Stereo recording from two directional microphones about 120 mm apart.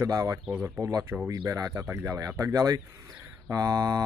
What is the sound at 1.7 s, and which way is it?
Speech, 20° right (ahead or behind).